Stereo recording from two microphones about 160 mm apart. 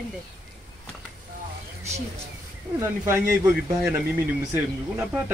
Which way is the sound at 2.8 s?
15° right (ahead or behind).